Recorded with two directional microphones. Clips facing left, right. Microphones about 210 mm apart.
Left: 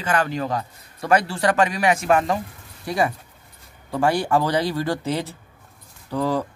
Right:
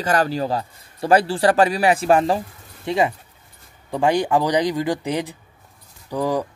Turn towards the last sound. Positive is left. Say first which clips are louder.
# right 1 dB
turn(degrees=-15)  # may be behind; listen again after turning